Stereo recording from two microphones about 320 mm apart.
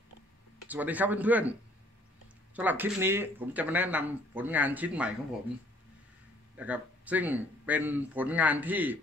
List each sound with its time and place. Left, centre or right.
0.7 s speech: centre
2.5 s speech: centre
6.5 s speech: centre